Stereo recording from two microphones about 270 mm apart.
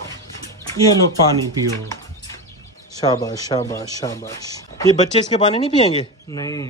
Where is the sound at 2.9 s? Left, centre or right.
Centre.